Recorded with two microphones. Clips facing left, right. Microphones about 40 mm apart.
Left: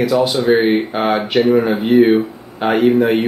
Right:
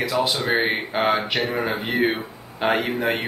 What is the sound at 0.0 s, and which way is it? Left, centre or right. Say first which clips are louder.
Speech: left 8 dB; centre.